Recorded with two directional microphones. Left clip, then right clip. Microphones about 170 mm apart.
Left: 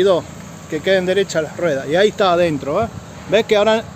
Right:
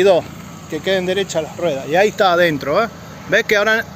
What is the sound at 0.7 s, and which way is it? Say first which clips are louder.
Speech: left 2 dB; 30° left (ahead or behind).